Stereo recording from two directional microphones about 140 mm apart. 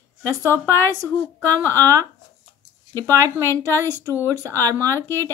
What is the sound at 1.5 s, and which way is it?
A woman's voice, 20° right (ahead or behind).